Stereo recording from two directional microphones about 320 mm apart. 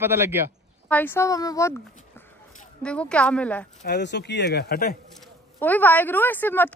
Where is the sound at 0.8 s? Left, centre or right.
Centre.